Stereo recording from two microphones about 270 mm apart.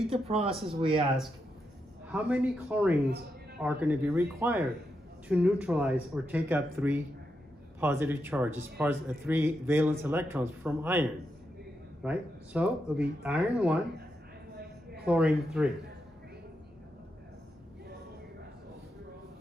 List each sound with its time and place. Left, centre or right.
0.1 s speech: right
2.1 s a man's voice: centre
15.0 s speech: centre